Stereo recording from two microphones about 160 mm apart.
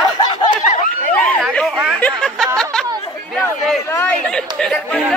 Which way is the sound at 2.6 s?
5° left (ahead or behind).